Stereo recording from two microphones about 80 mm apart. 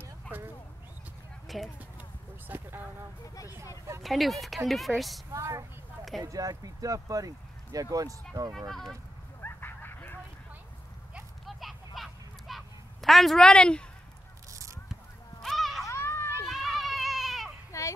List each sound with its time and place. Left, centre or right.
1.5 s speech: centre
2.0 s a sound: right
4.0 s speech: centre
5.3 s speech: right
8.5 s speech: centre
9.4 s a sound: left
11.4 s a sound: centre
14.5 s a sound: right
15.4 s music: centre
15.9 s children playing: left
16.4 s children playing: centre
17.6 s children playing: left